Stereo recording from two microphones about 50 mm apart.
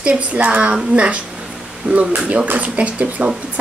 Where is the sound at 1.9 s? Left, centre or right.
Right.